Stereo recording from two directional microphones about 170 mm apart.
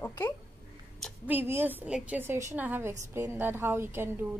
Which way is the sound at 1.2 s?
10° right (ahead or behind).